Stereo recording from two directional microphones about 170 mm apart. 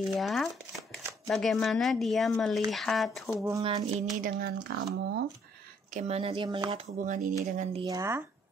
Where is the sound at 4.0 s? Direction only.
50° right (ahead or behind).